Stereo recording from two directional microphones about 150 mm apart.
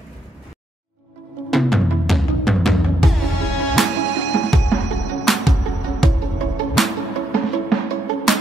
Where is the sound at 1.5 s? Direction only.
Centre (ahead or behind).